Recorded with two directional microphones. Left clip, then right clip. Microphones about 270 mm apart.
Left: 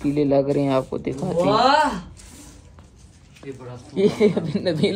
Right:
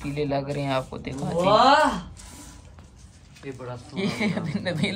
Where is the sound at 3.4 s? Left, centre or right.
Right.